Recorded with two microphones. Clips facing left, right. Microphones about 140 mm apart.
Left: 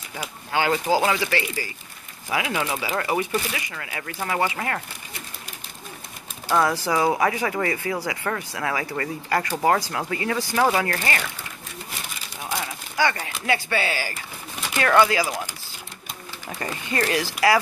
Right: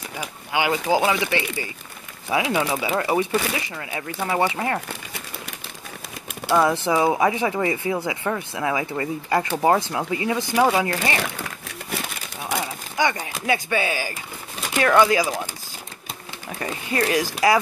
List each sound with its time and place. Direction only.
0.5 s speech: 15° right (ahead or behind)
6.5 s speech: 20° right (ahead or behind)
12.4 s speech: 20° right (ahead or behind)
16.5 s speech: 10° right (ahead or behind)